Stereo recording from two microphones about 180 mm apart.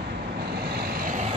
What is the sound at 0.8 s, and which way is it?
Vehicle, 55° right (ahead or behind).